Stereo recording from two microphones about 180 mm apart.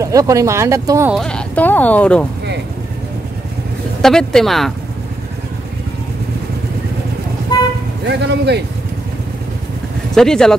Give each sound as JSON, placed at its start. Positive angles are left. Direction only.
{"t": 0.0, "sound": "speech", "side_deg": -20}
{"t": 1.1, "sound": "speech", "side_deg": 5}
{"t": 4.0, "sound": "speech", "side_deg": 5}
{"t": 8.1, "sound": "speech", "side_deg": -70}
{"t": 10.1, "sound": "speech", "side_deg": 5}